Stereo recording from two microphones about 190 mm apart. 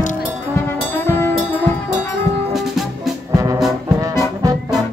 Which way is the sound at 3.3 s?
15° right (ahead or behind).